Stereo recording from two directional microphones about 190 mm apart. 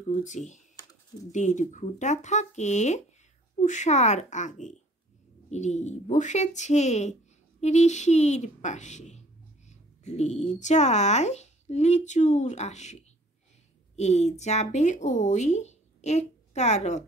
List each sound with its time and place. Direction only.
0.1 s speech: 40° left (ahead or behind)